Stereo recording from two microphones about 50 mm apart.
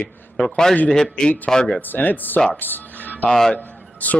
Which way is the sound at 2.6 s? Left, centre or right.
Left.